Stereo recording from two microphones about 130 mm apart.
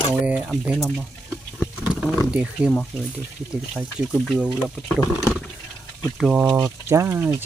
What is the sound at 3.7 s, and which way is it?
Speech, 5° right (ahead or behind).